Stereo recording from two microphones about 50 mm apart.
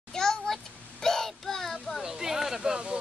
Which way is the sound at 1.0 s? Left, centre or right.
Centre.